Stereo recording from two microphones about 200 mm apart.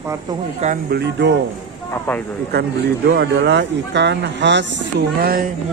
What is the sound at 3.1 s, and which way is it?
Speech, 55° right (ahead or behind).